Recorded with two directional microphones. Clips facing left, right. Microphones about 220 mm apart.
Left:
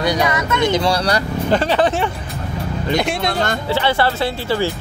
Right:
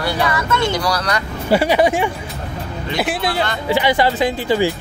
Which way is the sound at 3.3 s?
45° left (ahead or behind).